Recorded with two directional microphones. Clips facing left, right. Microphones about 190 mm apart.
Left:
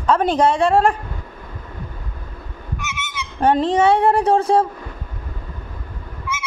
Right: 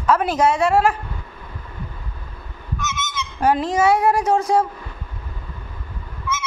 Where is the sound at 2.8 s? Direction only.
15° left (ahead or behind).